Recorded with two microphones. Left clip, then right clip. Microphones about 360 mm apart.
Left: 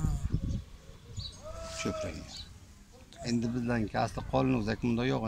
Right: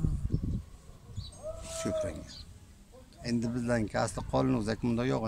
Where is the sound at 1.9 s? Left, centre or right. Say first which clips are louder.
Right 4 dB; centre.